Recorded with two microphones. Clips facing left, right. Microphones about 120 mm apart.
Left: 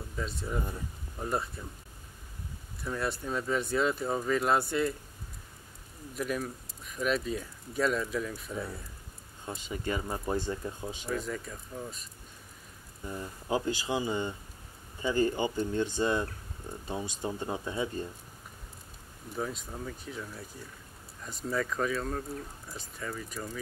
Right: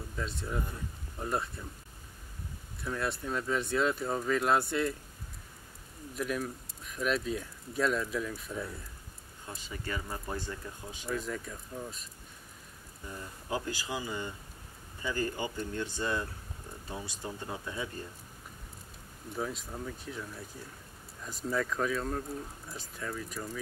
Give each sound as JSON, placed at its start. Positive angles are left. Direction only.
{"t": 0.1, "sound": "speech", "side_deg": 0}
{"t": 2.8, "sound": "speech", "side_deg": 0}
{"t": 6.1, "sound": "speech", "side_deg": 0}
{"t": 9.5, "sound": "speech", "side_deg": 20}
{"t": 11.1, "sound": "speech", "side_deg": 0}
{"t": 13.1, "sound": "speech", "side_deg": 20}
{"t": 19.3, "sound": "speech", "side_deg": 0}